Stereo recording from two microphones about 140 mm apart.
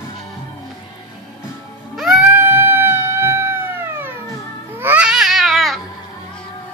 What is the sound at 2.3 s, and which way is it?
Music, 15° right (ahead or behind).